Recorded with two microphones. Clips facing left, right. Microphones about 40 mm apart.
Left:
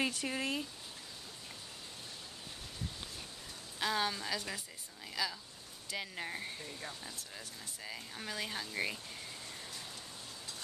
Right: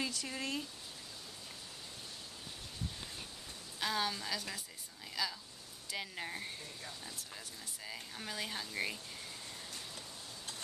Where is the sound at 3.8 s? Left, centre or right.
Centre.